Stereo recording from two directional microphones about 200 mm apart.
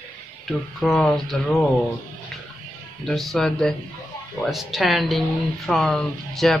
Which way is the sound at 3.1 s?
Centre (ahead or behind).